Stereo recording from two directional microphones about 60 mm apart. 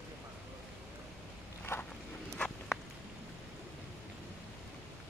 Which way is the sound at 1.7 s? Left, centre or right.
Left.